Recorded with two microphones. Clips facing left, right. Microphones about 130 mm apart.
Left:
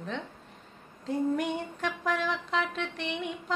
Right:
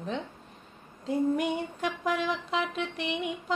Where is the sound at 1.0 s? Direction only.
15° right (ahead or behind).